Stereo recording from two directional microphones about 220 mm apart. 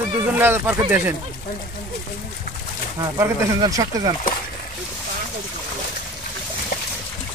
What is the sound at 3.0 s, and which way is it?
Speech, 15° right (ahead or behind).